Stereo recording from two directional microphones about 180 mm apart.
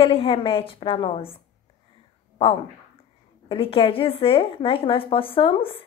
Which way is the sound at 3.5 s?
30° left (ahead or behind).